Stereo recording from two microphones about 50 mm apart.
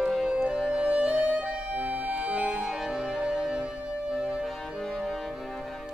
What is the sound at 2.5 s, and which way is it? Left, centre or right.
Music, centre.